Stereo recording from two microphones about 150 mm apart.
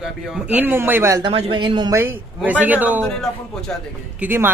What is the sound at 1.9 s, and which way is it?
Speech, 15° right (ahead or behind).